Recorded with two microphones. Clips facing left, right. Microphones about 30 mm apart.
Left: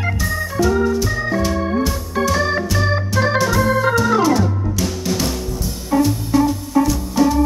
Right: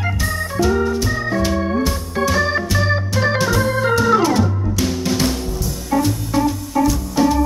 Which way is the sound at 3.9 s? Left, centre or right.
Centre.